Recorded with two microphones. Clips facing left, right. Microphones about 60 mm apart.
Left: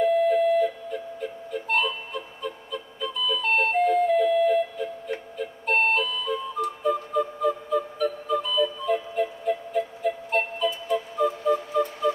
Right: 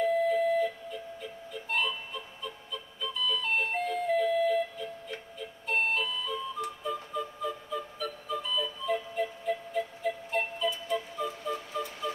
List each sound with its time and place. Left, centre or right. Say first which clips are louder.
0.3 s music: left 6 dB; left